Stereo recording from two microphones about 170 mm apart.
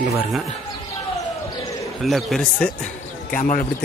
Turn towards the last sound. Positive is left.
turn(degrees=50)  # may be behind; listen again after turning